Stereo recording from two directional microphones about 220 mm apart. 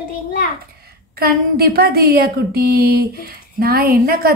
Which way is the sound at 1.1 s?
45° right (ahead or behind).